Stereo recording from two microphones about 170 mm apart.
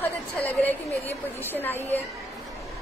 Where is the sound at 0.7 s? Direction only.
10° left (ahead or behind).